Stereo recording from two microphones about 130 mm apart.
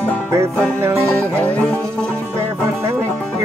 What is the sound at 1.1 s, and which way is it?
Music, 10° left (ahead or behind).